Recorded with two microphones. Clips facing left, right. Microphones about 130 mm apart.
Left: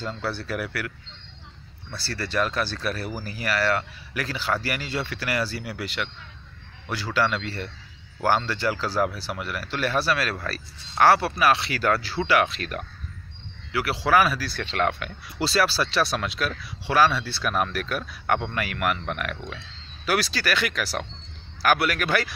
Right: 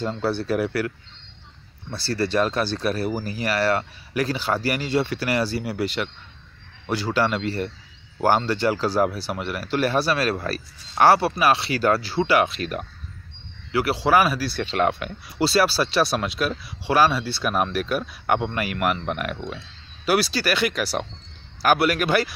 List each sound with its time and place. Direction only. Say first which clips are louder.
0.0 s speech: right 6 dB; 25° right (ahead or behind)
12.4 s speech: right 4 dB; 15° right (ahead or behind)
13.7 s speech: right 4 dB; 30° right (ahead or behind)
13.9 s speech: even; 15° right (ahead or behind)
15.4 s speech: right 3 dB; 10° right (ahead or behind)
20.1 s speech: right 4 dB; 10° right (ahead or behind)